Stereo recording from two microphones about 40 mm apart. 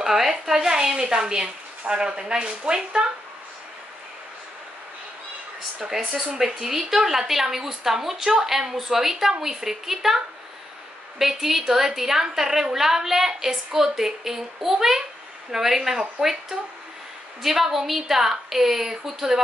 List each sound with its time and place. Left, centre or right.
0.0 s a woman's voice: centre
5.8 s a woman's voice: centre